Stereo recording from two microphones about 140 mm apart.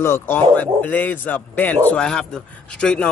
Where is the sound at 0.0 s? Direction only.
15° left (ahead or behind).